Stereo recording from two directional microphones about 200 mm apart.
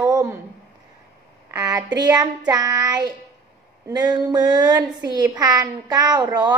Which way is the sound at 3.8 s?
20° right (ahead or behind).